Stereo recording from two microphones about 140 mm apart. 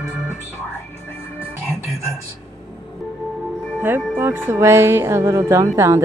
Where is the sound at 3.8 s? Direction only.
15° right (ahead or behind).